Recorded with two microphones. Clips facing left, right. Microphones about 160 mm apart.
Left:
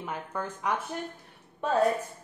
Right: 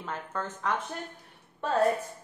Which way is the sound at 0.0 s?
10° left (ahead or behind).